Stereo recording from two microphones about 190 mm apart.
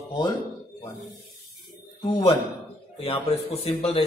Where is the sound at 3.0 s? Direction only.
30° left (ahead or behind).